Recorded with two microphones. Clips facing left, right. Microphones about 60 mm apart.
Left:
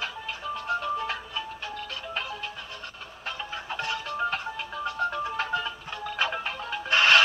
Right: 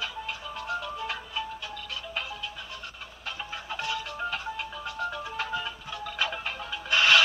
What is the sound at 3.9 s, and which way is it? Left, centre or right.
Music, left.